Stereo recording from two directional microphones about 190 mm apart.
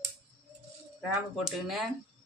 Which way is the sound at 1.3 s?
Centre (ahead or behind).